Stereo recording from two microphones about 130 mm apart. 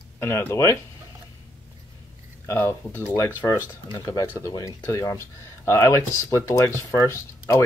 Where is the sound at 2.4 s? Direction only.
20° left (ahead or behind).